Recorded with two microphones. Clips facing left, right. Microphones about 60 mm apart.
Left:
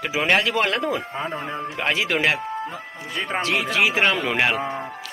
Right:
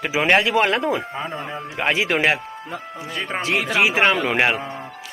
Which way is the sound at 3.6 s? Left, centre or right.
Right.